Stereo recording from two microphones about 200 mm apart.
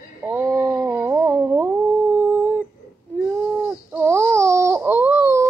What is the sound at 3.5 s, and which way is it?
Baby cry, 10° right (ahead or behind).